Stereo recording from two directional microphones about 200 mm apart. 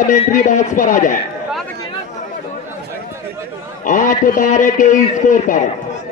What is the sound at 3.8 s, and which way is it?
A man's voice, 40° left (ahead or behind).